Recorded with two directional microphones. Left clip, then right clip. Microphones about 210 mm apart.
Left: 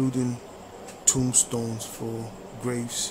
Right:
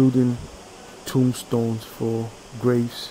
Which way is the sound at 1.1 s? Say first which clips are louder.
Right 1 dB; 20° right (ahead or behind).